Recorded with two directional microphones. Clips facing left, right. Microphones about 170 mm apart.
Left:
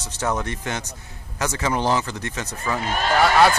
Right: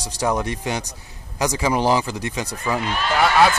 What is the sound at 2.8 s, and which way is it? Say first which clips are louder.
Speech: left 1 dB; 45° left (ahead or behind).